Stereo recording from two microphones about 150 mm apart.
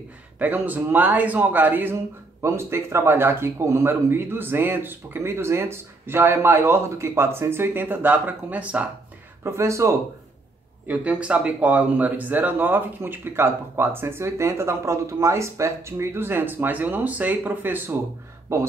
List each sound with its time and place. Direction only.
0.4 s speech: 10° right (ahead or behind)
10.9 s speech: 10° right (ahead or behind)